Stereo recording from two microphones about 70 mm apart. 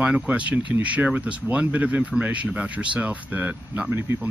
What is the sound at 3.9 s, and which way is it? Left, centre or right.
Speech, right.